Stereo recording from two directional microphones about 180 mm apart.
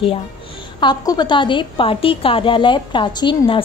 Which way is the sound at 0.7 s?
25° left (ahead or behind).